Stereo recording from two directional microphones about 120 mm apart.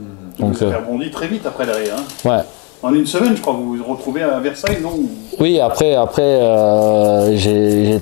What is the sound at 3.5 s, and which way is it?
Speech, 25° left (ahead or behind).